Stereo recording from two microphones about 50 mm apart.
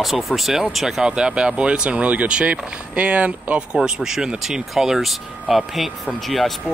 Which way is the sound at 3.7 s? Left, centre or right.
Centre.